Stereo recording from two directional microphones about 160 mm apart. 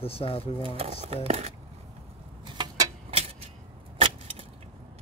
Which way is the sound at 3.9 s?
35° right (ahead or behind).